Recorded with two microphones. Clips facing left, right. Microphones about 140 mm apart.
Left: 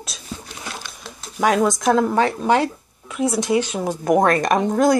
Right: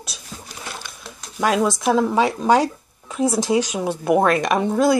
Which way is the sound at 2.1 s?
15° right (ahead or behind).